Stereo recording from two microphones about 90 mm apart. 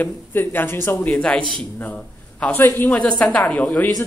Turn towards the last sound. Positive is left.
turn(degrees=15)  # may be behind; listen again after turning